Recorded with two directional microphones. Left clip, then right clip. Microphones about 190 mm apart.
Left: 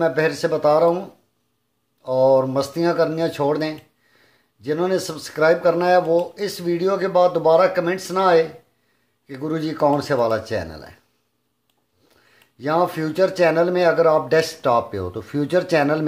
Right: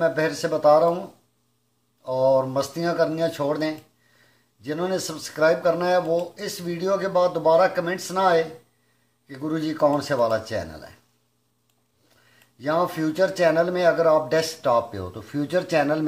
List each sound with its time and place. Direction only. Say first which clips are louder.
0.0 s speech: left 3 dB; 35° left (ahead or behind)
2.0 s speech: left 4 dB; 40° left (ahead or behind)
12.5 s speech: left 3 dB; 40° left (ahead or behind)